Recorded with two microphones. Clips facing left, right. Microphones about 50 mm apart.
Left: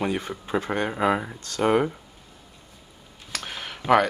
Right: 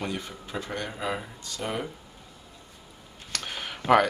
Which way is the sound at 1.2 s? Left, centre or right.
Left.